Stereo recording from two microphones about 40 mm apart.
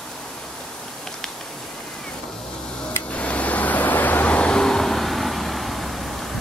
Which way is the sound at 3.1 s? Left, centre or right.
Left.